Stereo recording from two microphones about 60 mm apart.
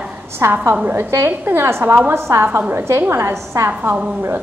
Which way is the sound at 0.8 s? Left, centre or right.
Right.